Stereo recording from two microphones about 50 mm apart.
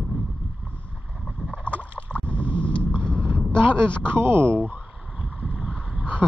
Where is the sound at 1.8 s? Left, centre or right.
Right.